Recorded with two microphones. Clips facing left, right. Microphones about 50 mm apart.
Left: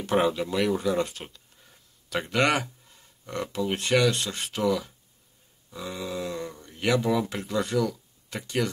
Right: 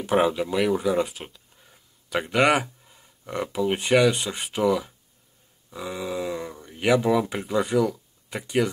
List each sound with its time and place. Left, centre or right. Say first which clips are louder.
0.0 s speech: right 2 dB; centre